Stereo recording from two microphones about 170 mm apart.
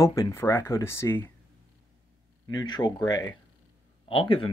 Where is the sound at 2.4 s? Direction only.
25° left (ahead or behind).